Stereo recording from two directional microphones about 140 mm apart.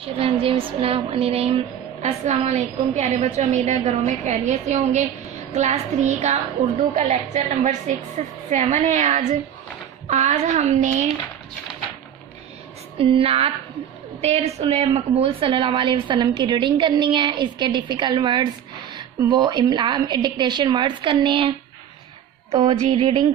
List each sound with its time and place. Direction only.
0.0 s a sound: 40° right (ahead or behind)
2.0 s a woman's voice: 55° right (ahead or behind)
12.9 s a woman's voice: 40° right (ahead or behind)